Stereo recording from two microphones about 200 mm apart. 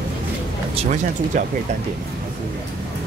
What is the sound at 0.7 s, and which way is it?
Speech, 35° right (ahead or behind).